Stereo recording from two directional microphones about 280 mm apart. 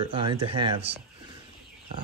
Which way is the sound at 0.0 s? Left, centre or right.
Centre.